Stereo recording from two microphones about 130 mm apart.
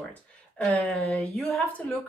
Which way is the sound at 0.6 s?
5° left (ahead or behind).